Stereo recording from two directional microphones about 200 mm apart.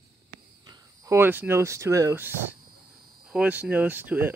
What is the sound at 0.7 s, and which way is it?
Speech, 15° right (ahead or behind).